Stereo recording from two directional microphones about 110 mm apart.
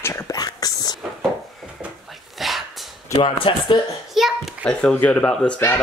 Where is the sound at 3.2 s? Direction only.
55° left (ahead or behind).